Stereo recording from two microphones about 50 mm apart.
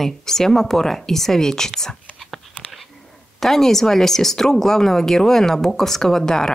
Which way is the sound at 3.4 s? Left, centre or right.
Centre.